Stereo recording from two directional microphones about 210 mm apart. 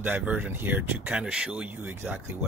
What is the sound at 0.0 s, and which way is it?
Speech, 10° right (ahead or behind).